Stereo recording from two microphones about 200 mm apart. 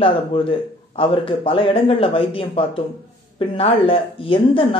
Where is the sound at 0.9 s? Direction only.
25° left (ahead or behind).